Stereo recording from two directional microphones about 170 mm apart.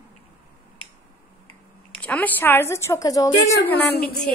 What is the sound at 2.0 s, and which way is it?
A woman's voice, 10° left (ahead or behind).